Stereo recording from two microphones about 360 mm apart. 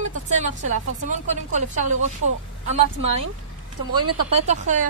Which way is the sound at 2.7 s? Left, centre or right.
Centre.